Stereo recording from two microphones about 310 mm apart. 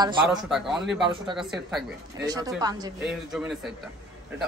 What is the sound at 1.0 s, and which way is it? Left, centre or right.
Speech, centre.